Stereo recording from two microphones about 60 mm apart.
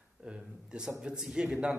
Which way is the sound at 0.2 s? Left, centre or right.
Centre.